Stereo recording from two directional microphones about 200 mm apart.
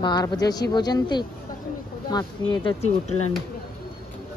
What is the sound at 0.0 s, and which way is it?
A woman's voice, 20° left (ahead or behind).